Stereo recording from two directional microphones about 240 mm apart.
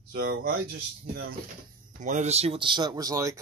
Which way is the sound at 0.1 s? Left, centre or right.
Right.